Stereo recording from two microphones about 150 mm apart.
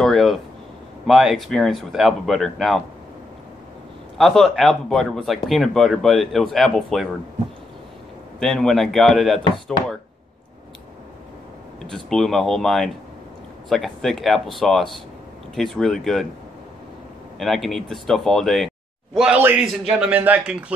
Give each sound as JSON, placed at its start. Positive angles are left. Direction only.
{"t": 0.0, "sound": "a sound", "side_deg": 0}
{"t": 1.0, "sound": "speech", "side_deg": 0}
{"t": 4.2, "sound": "speech", "side_deg": 0}
{"t": 8.4, "sound": "speech", "side_deg": 0}
{"t": 11.8, "sound": "speech", "side_deg": 0}
{"t": 17.4, "sound": "a man's voice", "side_deg": 0}